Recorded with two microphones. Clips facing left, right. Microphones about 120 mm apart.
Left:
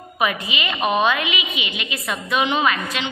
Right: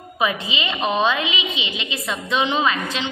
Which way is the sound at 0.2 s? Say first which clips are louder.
Even; 30° right (ahead or behind).